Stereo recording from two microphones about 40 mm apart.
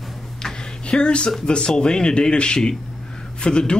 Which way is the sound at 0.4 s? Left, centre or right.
Centre.